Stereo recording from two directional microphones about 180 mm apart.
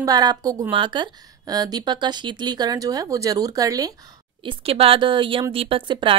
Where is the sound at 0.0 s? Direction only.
20° right (ahead or behind).